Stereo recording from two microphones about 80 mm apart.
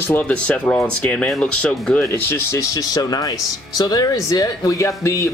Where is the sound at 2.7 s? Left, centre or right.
Left.